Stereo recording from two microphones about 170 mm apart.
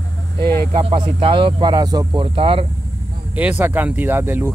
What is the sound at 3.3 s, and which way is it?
Speech, 10° right (ahead or behind).